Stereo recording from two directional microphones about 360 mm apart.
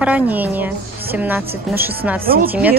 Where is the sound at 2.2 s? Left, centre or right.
Right.